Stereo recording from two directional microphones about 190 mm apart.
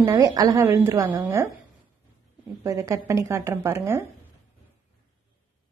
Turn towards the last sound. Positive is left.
turn(degrees=-15)  # may be behind; listen again after turning